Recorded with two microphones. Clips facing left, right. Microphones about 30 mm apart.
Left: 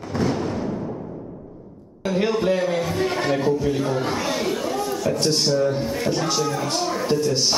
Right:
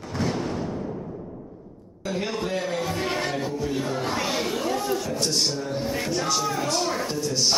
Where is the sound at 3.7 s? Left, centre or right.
Centre.